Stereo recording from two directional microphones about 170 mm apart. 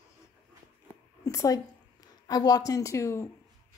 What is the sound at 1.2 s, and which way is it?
A woman's voice, 20° left (ahead or behind).